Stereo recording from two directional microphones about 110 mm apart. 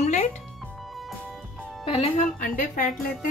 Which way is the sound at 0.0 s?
90° left.